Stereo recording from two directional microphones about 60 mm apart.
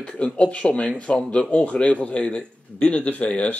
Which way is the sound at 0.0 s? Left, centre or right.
Centre.